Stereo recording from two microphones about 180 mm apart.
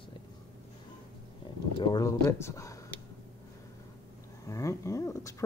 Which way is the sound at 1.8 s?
20° left (ahead or behind).